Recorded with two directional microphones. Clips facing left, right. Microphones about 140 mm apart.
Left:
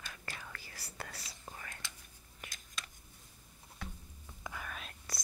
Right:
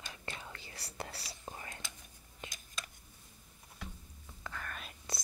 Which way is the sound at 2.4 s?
25° right (ahead or behind).